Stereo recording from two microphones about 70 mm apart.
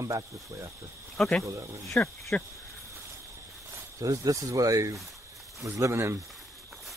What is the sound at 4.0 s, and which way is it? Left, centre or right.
Speech, right.